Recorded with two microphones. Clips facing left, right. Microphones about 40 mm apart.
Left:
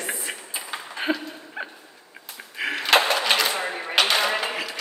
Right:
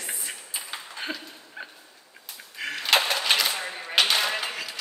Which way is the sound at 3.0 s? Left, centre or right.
Centre.